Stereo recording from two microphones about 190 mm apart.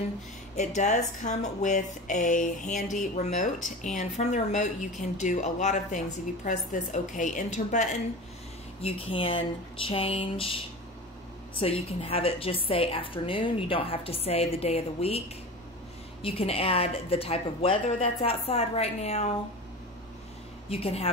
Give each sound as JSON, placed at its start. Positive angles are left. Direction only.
{"t": 0.6, "sound": "a woman's voice", "side_deg": 40}
{"t": 11.6, "sound": "a woman's voice", "side_deg": 30}
{"t": 20.7, "sound": "a woman's voice", "side_deg": 30}